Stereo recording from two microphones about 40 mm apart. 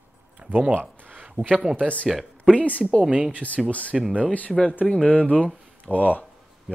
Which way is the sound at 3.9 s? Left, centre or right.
Centre.